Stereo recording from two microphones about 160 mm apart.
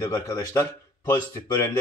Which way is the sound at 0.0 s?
20° left (ahead or behind).